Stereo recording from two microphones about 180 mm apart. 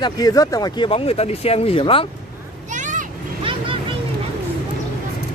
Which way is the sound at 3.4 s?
30° right (ahead or behind).